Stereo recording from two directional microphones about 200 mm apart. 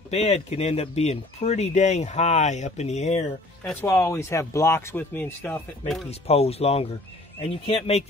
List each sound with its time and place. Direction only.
0.1 s speech: 35° left (ahead or behind)
3.8 s speech: 15° left (ahead or behind)
6.0 s speech: 30° left (ahead or behind)